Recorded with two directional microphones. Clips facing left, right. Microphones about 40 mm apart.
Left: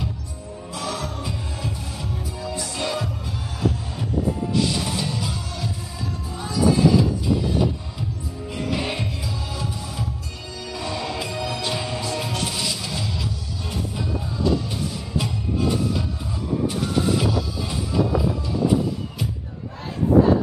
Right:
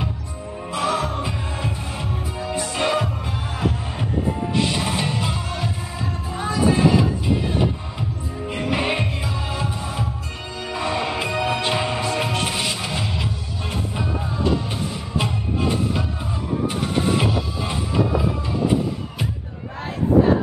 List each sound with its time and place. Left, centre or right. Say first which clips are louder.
0.7 s music: right 7 dB; right